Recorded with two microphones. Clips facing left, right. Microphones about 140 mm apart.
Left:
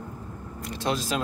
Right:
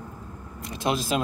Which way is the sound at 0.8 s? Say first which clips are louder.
Right 2 dB; 15° right (ahead or behind).